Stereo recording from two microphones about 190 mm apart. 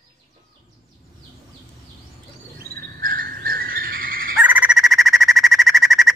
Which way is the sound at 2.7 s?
50° right (ahead or behind).